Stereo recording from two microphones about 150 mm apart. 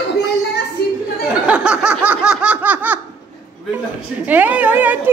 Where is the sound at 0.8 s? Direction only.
90° left.